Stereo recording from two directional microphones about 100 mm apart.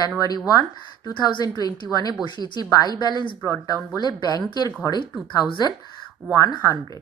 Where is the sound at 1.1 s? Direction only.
45° left (ahead or behind).